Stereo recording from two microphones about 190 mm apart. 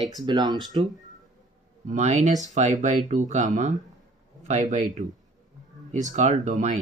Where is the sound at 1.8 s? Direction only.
40° right (ahead or behind).